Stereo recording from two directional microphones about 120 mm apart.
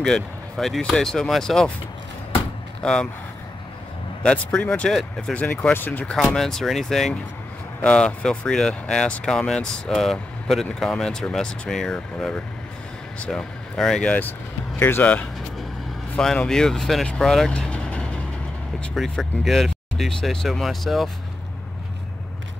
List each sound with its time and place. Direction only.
0.0 s speech: 5° left (ahead or behind)
2.8 s speech: 5° left (ahead or behind)
4.2 s speech: 10° left (ahead or behind)
6.1 s speech: centre (ahead or behind)
14.8 s speech: 15° left (ahead or behind); by 21.1 s centre (ahead or behind)